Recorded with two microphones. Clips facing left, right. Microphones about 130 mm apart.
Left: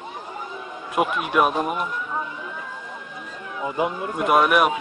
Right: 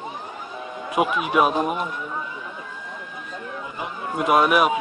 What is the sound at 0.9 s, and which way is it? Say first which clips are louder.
Speech: right 1 dB; centre (ahead or behind).